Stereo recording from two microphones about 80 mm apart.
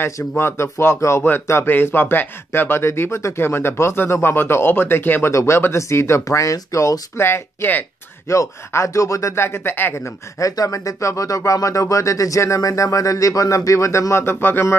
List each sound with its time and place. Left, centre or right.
0.4 s speech: left
8.3 s speech: left